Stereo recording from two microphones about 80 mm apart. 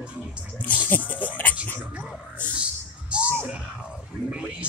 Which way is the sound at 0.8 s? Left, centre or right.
Left.